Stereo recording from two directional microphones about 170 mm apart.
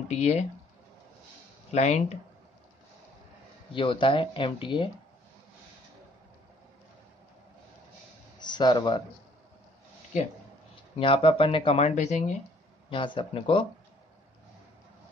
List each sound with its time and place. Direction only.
0.1 s speech: 40° left (ahead or behind)
1.7 s speech: 40° left (ahead or behind)
3.7 s speech: 30° left (ahead or behind)
8.4 s speech: 25° left (ahead or behind)
11.0 s speech: 30° left (ahead or behind)
12.9 s speech: 30° left (ahead or behind)